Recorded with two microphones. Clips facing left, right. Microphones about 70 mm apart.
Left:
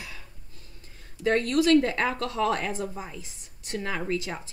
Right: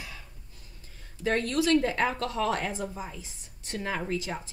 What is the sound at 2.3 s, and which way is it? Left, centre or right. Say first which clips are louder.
Speech: left 2 dB; left.